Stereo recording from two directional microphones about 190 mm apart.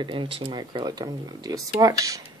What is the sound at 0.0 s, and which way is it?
Speech, 25° right (ahead or behind).